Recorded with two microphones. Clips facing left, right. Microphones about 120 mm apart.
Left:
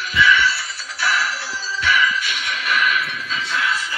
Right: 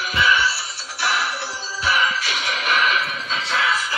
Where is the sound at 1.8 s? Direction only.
35° right (ahead or behind).